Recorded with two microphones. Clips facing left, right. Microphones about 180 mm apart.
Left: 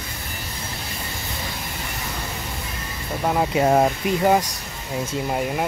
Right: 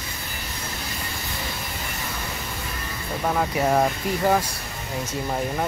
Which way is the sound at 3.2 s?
20° left (ahead or behind).